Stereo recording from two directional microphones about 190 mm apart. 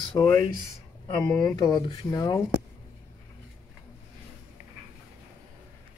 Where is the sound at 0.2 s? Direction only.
15° left (ahead or behind).